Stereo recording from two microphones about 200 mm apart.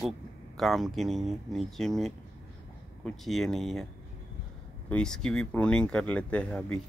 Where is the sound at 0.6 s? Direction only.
Centre (ahead or behind).